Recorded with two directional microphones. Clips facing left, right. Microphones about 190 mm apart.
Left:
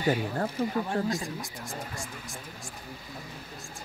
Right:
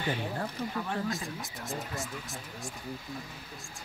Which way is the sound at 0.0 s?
40° left (ahead or behind).